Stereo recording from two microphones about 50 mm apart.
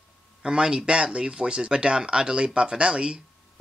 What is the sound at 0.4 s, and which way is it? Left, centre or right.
Speech, centre.